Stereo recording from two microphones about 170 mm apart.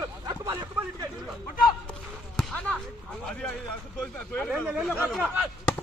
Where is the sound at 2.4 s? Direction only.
Centre (ahead or behind).